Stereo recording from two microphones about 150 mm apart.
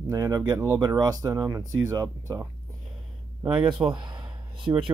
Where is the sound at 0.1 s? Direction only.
25° right (ahead or behind).